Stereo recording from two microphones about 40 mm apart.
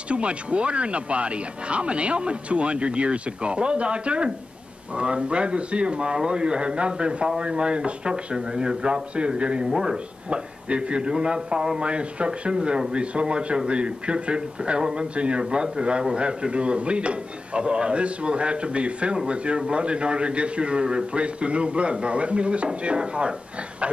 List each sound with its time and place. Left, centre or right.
0.1 s speech: right
9.7 s a man's voice: centre
10.3 s speech: right